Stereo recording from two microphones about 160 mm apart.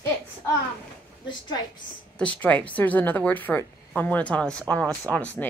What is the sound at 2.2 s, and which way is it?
Speech, 10° left (ahead or behind).